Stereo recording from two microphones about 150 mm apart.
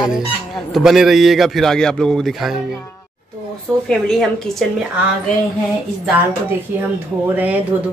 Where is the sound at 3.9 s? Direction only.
Centre (ahead or behind).